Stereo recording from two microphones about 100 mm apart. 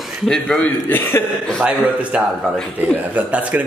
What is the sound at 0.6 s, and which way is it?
Speech, 20° left (ahead or behind).